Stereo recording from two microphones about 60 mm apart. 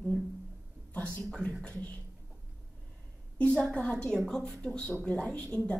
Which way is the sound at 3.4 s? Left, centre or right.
Centre.